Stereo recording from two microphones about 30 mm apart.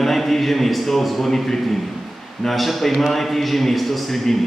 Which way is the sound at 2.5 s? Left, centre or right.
Centre.